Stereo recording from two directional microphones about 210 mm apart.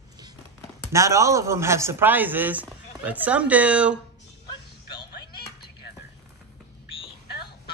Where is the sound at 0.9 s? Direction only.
15° right (ahead or behind).